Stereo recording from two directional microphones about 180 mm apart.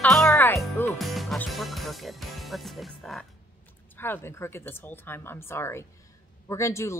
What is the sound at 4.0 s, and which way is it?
Speech, 10° left (ahead or behind).